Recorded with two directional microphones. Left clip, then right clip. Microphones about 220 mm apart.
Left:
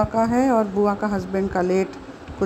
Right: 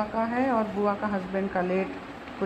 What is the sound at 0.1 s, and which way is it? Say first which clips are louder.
Speech: left 7 dB; 60° left (ahead or behind).